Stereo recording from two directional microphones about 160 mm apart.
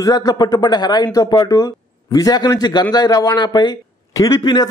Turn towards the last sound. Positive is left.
turn(degrees=25)  # may be behind; listen again after turning